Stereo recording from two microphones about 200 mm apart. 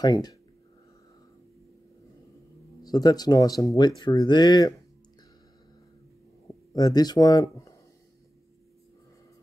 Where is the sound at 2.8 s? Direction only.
20° left (ahead or behind).